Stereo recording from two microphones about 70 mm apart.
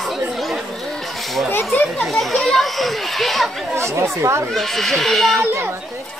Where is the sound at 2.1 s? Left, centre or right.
Centre.